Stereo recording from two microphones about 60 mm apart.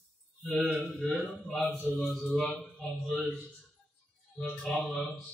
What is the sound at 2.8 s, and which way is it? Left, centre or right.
Speech, centre.